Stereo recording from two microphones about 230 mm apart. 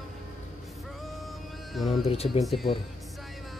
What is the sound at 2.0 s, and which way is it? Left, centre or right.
Speech, left.